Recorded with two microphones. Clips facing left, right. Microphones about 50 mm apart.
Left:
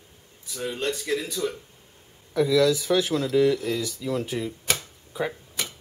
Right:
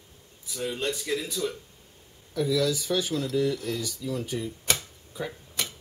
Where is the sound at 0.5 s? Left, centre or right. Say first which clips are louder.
Left 2 dB; centre.